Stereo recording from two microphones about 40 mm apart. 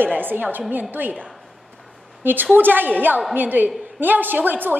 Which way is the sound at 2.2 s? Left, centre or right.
Right.